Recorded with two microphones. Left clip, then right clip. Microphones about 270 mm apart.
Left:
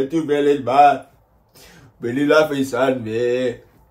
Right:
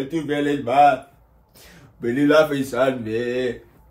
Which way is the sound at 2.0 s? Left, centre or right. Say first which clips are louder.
Left 1 dB; centre.